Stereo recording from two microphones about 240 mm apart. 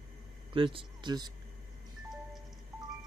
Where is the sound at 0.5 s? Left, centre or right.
Right.